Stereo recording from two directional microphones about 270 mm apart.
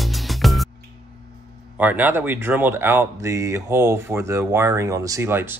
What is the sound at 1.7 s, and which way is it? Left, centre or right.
Speech, centre.